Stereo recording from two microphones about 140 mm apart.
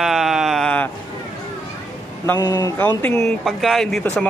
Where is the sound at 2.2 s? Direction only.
20° left (ahead or behind).